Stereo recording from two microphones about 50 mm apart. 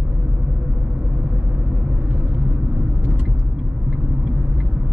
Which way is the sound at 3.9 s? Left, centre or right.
Centre.